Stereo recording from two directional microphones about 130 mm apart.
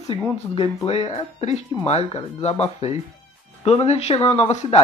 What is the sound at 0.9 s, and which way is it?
Speech, 50° left (ahead or behind).